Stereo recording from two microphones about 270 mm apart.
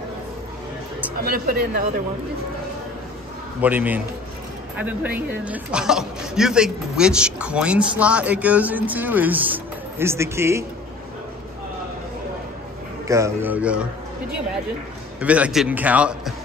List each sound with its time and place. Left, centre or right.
1.2 s speech: right
3.6 s speech: centre
13.1 s a man's voice: centre
15.1 s speech: centre